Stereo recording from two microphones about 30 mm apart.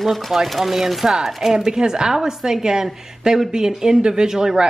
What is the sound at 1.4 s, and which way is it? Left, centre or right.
A woman's voice, right.